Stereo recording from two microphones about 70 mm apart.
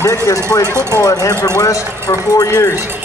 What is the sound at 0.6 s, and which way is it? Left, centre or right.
Speech, right.